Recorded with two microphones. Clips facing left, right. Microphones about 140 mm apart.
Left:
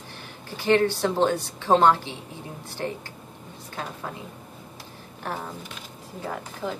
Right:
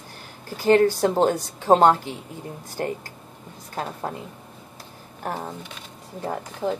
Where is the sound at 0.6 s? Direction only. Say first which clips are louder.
Right 4 dB; 40° right (ahead or behind).